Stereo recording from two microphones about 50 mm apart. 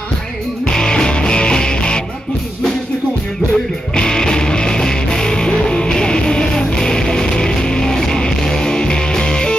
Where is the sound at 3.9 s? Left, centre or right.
Centre.